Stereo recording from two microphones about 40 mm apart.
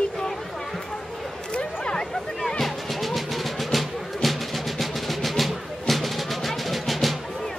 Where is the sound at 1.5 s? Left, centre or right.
Left.